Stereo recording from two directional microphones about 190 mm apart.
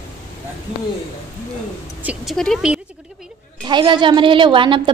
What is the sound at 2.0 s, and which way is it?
Speech, 5° right (ahead or behind).